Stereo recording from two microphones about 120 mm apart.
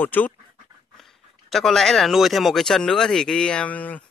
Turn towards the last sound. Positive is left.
turn(degrees=15)  # may be behind; listen again after turning